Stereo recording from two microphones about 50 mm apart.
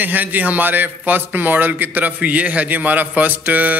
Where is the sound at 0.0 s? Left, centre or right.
Right.